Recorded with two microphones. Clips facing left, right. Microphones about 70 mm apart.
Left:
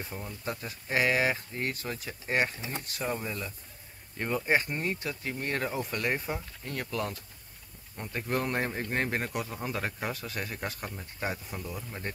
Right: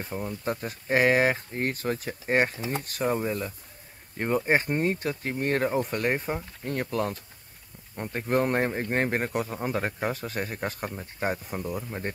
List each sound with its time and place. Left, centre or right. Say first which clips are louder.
0.1 s speech: right 10 dB; right
2.6 s speech: right 6 dB; right